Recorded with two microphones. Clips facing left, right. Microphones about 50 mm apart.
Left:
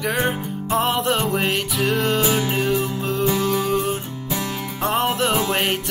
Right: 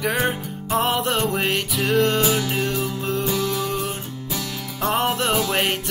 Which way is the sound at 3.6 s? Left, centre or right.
Centre.